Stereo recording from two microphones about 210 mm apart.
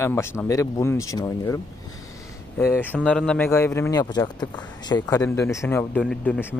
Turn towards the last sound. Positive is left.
turn(degrees=5)  # may be behind; listen again after turning